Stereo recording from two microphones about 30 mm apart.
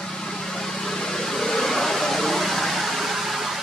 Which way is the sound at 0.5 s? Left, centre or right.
Centre.